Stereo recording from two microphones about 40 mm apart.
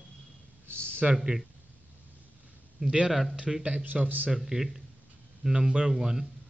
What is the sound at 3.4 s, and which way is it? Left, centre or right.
Speech, centre.